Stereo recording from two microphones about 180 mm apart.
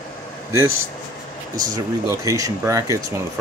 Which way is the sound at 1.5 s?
20° right (ahead or behind).